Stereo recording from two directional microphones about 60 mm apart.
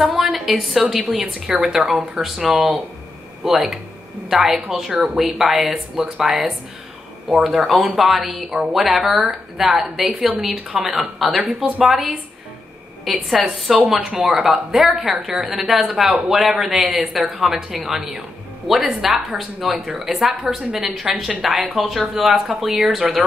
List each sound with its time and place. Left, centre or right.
0.0 s a sound: centre
0.3 s a woman's voice: centre
1.2 s speech: centre
1.9 s a woman's voice: centre
10.7 s speech: centre
11.0 s a woman's voice: centre